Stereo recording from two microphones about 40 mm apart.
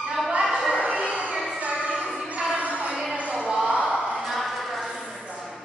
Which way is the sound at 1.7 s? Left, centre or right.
Right.